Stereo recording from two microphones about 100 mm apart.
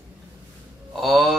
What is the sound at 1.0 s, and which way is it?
Speech, centre (ahead or behind).